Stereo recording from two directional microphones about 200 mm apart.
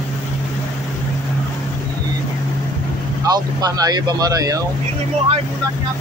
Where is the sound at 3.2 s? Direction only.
20° right (ahead or behind).